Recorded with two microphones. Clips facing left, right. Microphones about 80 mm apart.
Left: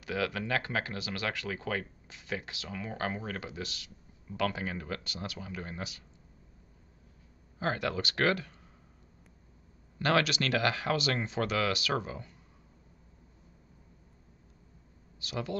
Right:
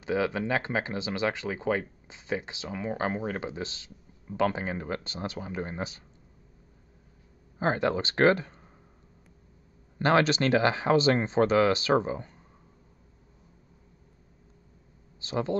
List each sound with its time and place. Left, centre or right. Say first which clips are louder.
0.0 s speech: right 6 dB; right
7.5 s speech: right 6 dB; right
9.9 s speech: right 5 dB; right
15.1 s speech: right 7 dB; right